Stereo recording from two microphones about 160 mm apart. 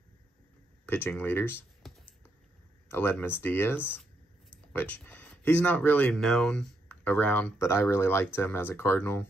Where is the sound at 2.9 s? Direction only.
15° left (ahead or behind).